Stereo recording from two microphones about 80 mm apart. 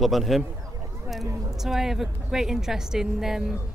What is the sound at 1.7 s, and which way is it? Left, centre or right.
A man's voice, centre.